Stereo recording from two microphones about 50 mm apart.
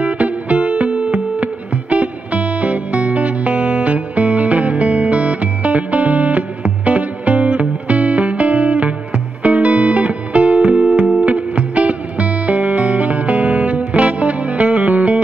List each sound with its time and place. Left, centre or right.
0.0 s music: right